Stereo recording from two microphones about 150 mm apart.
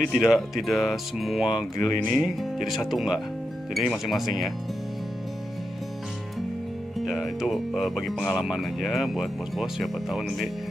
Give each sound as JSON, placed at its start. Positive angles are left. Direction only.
{"t": 0.0, "sound": "speech", "side_deg": -5}
{"t": 1.8, "sound": "speech", "side_deg": 25}
{"t": 2.0, "sound": "speech", "side_deg": 0}
{"t": 7.1, "sound": "speech", "side_deg": 0}